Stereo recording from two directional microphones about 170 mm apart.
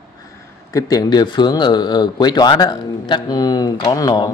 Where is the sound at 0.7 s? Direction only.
20° left (ahead or behind).